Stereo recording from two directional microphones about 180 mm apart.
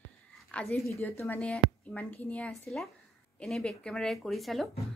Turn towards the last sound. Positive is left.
turn(degrees=0)  # may be behind; listen again after turning